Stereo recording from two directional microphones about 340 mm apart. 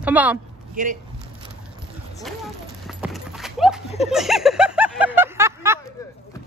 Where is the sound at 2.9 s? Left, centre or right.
Centre.